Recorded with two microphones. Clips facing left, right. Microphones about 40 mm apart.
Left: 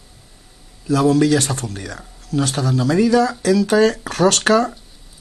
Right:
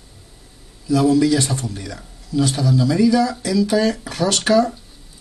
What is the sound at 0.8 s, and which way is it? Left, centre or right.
Speech, left.